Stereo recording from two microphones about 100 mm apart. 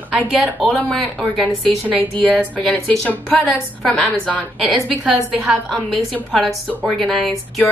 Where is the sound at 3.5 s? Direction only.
Centre (ahead or behind).